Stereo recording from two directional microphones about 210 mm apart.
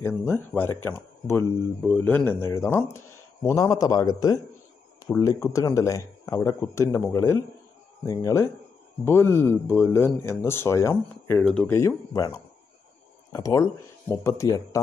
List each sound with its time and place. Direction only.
0.0 s speech: 10° left (ahead or behind)